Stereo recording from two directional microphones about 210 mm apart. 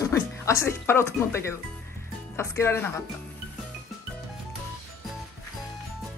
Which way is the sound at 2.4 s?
15° left (ahead or behind).